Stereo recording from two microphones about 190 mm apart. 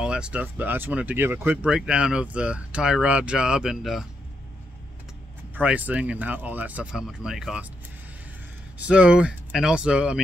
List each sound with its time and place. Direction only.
0.0 s speech: 5° right (ahead or behind)
5.5 s speech: 5° right (ahead or behind)
8.8 s speech: 5° right (ahead or behind)